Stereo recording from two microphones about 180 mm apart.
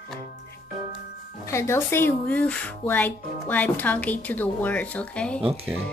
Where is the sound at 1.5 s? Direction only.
15° left (ahead or behind).